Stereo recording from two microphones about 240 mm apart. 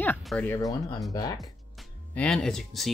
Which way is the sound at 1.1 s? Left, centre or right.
Centre.